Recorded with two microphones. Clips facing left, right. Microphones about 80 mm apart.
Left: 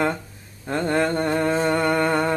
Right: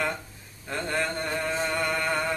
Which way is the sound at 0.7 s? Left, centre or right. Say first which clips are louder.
Left 8 dB; left.